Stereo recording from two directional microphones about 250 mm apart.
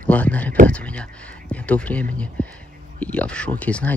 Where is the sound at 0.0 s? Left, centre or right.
Centre.